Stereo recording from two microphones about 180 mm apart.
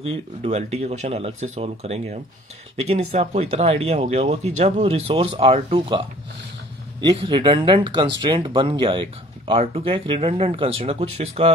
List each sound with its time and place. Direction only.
0.0 s speech: 35° right (ahead or behind)